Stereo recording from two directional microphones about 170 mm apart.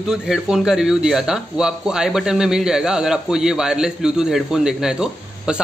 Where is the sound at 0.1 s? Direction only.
5° right (ahead or behind).